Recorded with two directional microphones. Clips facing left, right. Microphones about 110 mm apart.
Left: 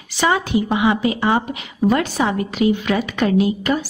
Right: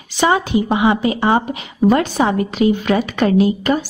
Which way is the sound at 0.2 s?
25° right (ahead or behind).